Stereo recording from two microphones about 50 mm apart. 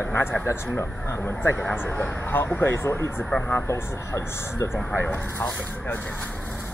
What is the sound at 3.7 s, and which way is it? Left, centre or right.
Speech, left.